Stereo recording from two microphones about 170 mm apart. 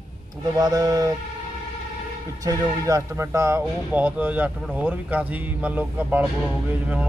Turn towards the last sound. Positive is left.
turn(degrees=-10)  # may be behind; listen again after turning